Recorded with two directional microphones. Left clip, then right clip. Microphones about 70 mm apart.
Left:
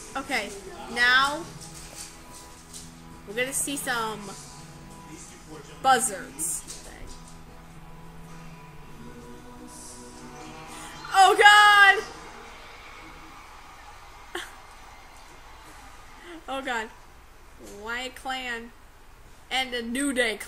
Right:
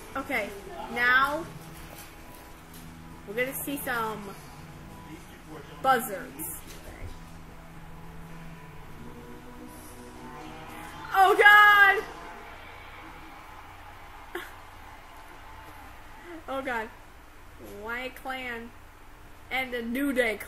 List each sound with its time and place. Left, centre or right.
0.2 s a woman's voice: centre
3.3 s a woman's voice: centre
5.8 s a woman's voice: centre
11.1 s music: centre
16.4 s a woman's voice: centre